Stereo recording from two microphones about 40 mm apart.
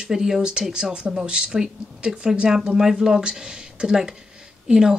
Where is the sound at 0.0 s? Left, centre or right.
Centre.